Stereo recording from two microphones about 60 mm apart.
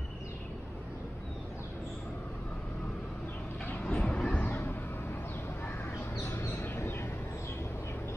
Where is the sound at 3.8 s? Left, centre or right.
Centre.